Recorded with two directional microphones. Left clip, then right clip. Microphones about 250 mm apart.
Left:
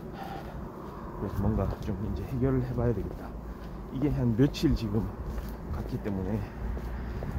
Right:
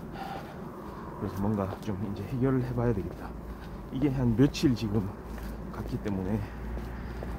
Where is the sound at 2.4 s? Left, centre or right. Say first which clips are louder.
Right 1 dB; centre.